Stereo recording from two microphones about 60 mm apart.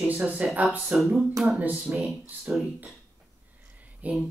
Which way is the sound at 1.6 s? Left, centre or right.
Right.